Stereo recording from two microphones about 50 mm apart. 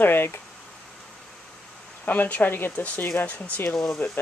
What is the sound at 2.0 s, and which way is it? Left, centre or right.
Speech, left.